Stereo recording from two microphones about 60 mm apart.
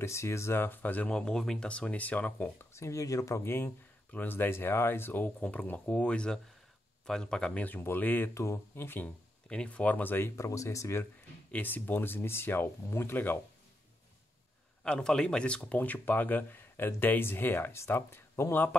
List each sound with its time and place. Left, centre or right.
0.0 s speech: left
0.6 s speech: left
1.1 s speech: centre
1.7 s speech: left
2.6 s speech: left
3.4 s speech: left; by 7.5 s centre
7.5 s speech: left
8.4 s speech: left
9.0 s speech: left
10.3 s speech: left
11.5 s speech: left
12.8 s speech: left
13.1 s speech: left
14.9 s speech: centre; by 18.7 s left